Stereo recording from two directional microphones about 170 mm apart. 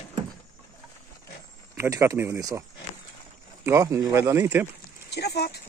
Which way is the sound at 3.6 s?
15° right (ahead or behind).